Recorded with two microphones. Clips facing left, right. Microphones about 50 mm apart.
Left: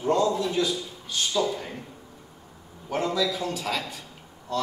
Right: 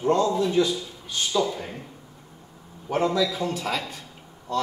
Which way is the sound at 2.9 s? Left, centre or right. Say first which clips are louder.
Right 3 dB; centre.